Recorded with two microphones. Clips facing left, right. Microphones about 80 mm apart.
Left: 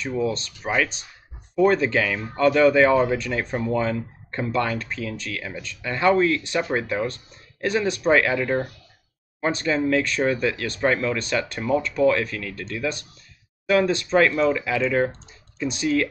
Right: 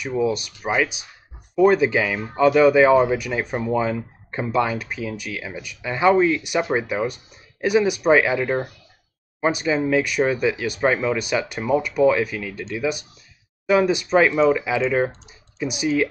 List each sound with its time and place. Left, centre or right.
0.0 s speech: centre